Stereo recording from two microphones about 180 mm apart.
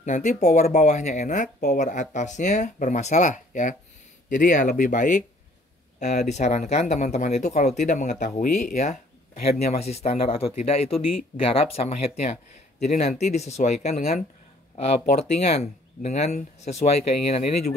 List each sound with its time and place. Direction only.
0.0 s speech: 40° left (ahead or behind)
6.2 s speech: 40° left (ahead or behind)